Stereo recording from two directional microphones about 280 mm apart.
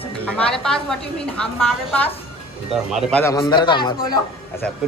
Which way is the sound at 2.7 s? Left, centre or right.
Centre.